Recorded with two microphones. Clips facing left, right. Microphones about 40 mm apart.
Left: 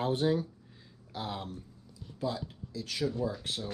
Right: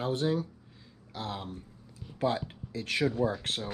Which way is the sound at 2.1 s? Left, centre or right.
Right.